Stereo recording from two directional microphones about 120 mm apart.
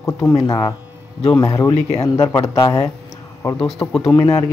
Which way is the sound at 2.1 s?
30° left (ahead or behind).